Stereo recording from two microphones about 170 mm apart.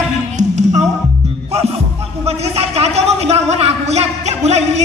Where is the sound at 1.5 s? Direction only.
40° right (ahead or behind).